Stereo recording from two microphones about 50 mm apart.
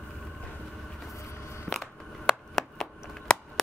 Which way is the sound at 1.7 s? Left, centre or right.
Centre.